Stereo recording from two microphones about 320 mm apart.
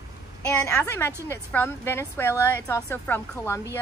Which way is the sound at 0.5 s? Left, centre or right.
Centre.